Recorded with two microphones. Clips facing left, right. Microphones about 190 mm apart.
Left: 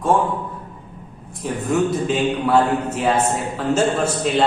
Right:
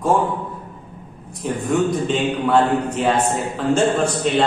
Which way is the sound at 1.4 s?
5° left (ahead or behind).